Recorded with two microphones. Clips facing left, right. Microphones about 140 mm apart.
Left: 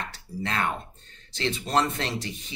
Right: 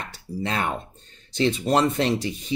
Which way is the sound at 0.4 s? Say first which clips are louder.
Right 2 dB; 15° right (ahead or behind).